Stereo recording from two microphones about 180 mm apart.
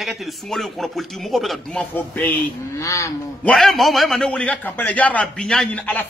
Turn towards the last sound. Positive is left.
turn(degrees=5)  # may be behind; listen again after turning